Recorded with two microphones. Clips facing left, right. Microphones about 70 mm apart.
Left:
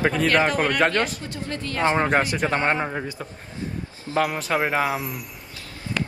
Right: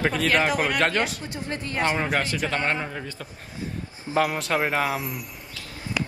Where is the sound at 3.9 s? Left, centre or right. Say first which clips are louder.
Right 1 dB; right.